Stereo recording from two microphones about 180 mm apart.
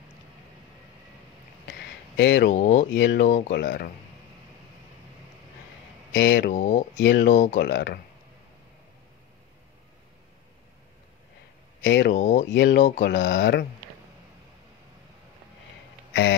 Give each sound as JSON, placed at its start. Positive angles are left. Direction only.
{"t": 1.7, "sound": "a sound", "side_deg": 80}
{"t": 2.5, "sound": "speech", "side_deg": 45}
{"t": 2.9, "sound": "speech", "side_deg": 85}
{"t": 3.6, "sound": "speech", "side_deg": 55}
{"t": 6.1, "sound": "speech", "side_deg": 85}
{"t": 6.5, "sound": "speech", "side_deg": 45}
{"t": 7.0, "sound": "speech", "side_deg": 90}
{"t": 7.2, "sound": "speech", "side_deg": 45}
{"t": 7.5, "sound": "speech", "side_deg": 75}
{"t": 11.8, "sound": "speech", "side_deg": 75}
{"t": 12.1, "sound": "speech", "side_deg": 40}
{"t": 12.4, "sound": "speech", "side_deg": 85}
{"t": 16.1, "sound": "a sound", "side_deg": 80}